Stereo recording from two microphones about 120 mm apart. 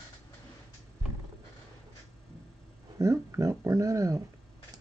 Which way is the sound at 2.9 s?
25° right (ahead or behind).